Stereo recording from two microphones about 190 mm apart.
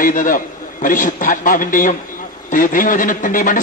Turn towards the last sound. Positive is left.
turn(degrees=45)  # may be behind; listen again after turning